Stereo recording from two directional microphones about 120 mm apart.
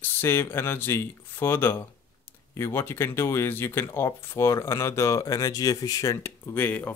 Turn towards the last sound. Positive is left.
turn(degrees=15)  # may be behind; listen again after turning